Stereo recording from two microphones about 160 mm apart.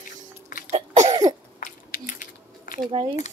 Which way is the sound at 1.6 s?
55° left (ahead or behind).